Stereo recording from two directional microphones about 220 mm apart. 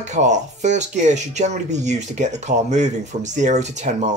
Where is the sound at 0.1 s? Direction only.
30° right (ahead or behind).